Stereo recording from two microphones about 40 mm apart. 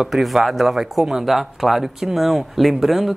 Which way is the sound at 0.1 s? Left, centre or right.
Centre.